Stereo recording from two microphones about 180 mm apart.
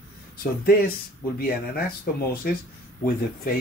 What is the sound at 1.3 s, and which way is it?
Speech, 55° left (ahead or behind).